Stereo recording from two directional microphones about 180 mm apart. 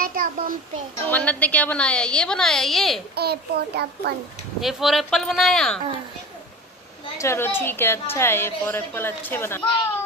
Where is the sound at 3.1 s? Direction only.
60° right (ahead or behind).